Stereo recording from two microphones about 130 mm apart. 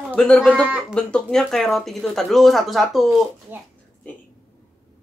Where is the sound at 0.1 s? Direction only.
10° left (ahead or behind).